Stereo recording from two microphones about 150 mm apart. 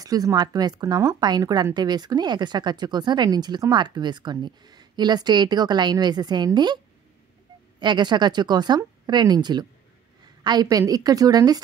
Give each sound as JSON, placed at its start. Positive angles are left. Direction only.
{"t": 0.0, "sound": "a woman's voice", "side_deg": -25}
{"t": 7.8, "sound": "a woman's voice", "side_deg": -30}